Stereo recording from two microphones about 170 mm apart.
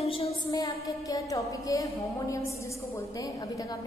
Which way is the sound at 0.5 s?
20° left (ahead or behind).